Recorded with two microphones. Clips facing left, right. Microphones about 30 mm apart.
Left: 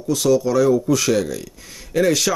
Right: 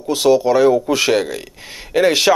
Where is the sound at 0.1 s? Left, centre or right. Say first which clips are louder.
Right 4 dB; right.